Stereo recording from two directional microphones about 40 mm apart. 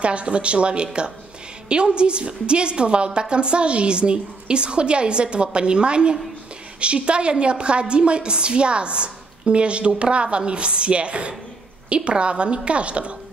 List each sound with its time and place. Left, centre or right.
0.0 s a woman's voice: right